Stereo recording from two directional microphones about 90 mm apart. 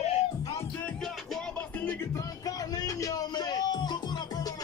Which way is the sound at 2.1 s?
40° left (ahead or behind).